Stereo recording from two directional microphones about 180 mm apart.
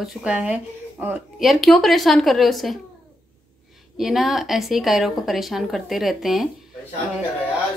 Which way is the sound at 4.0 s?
Centre (ahead or behind).